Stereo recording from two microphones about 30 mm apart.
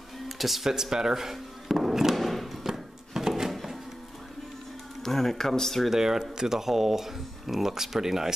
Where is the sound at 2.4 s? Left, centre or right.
Centre.